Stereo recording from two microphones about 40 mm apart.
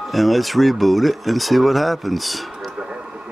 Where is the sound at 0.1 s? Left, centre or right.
Centre.